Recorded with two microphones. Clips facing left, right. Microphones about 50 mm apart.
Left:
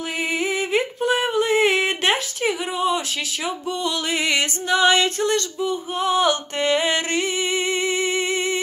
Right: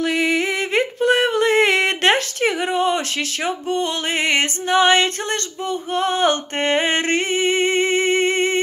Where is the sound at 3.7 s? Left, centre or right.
Right.